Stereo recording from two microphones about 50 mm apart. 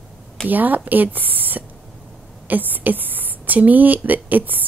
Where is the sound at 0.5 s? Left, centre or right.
Right.